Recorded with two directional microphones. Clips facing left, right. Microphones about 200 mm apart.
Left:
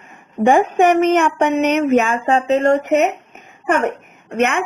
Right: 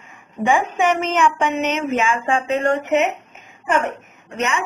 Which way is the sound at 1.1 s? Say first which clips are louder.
Left 4 dB; 60° left (ahead or behind).